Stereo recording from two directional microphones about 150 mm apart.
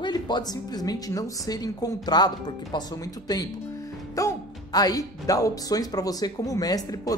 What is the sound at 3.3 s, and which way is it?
Speech, 25° left (ahead or behind).